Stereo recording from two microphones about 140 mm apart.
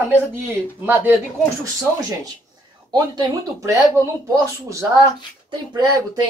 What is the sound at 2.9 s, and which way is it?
Speech, 25° right (ahead or behind).